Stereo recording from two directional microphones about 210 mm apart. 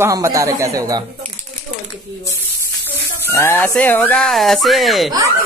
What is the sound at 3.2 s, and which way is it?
Speech, 10° left (ahead or behind).